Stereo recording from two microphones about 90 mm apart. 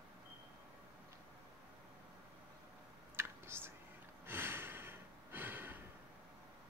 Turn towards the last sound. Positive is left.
turn(degrees=-25)  # may be behind; listen again after turning